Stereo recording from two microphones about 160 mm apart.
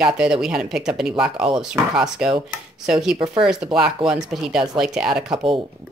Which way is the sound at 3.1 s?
30° right (ahead or behind).